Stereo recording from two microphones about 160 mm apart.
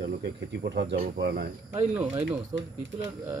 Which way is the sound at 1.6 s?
10° right (ahead or behind).